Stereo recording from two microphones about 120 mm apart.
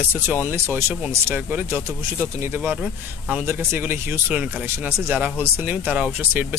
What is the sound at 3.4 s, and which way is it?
Speech, 20° right (ahead or behind).